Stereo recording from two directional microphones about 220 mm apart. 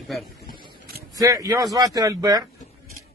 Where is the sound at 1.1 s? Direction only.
15° right (ahead or behind).